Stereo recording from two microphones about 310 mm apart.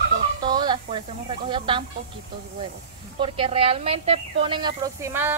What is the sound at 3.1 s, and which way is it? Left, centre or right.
A woman's voice, centre.